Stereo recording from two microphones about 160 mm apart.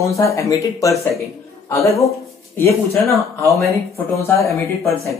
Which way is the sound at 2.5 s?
15° left (ahead or behind).